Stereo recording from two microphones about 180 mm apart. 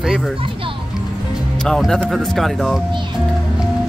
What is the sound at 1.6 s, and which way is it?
Speech, 5° left (ahead or behind).